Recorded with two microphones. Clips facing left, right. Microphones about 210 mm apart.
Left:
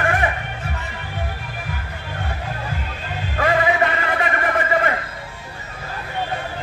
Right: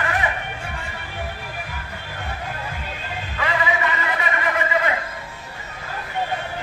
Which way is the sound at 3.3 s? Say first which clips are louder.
Left 6 dB; 50° left (ahead or behind).